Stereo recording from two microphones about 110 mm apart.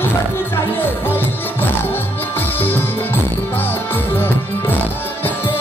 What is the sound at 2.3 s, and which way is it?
Music, 20° left (ahead or behind).